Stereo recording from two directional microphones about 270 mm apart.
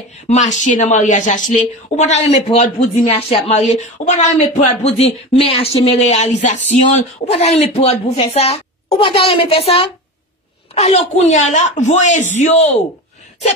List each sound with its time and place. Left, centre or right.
0.3 s a woman's voice: left